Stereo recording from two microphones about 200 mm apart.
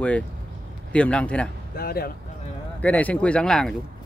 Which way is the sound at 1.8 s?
50° left (ahead or behind).